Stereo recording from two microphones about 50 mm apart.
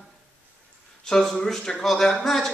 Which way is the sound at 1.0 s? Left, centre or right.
Centre.